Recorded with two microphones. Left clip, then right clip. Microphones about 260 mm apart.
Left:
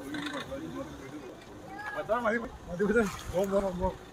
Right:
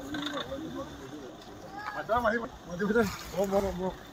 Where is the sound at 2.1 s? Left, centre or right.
Left.